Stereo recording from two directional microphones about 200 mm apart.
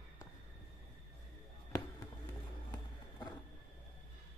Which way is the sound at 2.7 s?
20° left (ahead or behind).